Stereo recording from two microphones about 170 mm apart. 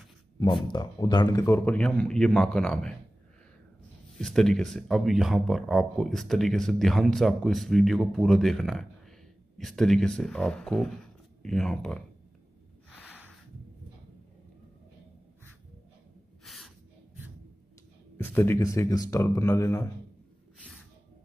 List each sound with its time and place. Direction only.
0.7 s speech: 25° left (ahead or behind); by 3.0 s 5° left (ahead or behind)
4.2 s speech: 5° left (ahead or behind)
12.9 s a sound: 10° left (ahead or behind)
16.4 s gasp: centre (ahead or behind)
18.1 s speech: 10° left (ahead or behind)